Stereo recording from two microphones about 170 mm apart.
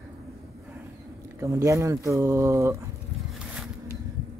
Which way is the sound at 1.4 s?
15° right (ahead or behind).